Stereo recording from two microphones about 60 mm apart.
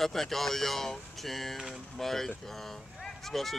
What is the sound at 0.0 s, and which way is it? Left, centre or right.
Speech, centre.